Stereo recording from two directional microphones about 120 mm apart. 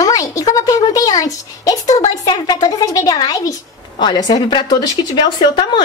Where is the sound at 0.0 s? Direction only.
30° left (ahead or behind).